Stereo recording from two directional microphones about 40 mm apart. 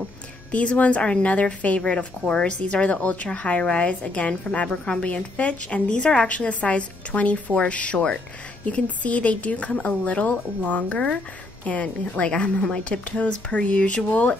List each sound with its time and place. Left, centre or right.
0.5 s a woman's voice: left
5.9 s a woman's voice: left
8.6 s a woman's voice: left